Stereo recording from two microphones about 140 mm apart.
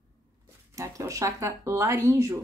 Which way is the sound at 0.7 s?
25° right (ahead or behind).